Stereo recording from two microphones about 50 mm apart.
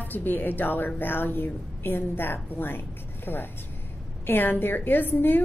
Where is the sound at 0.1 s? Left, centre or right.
Left.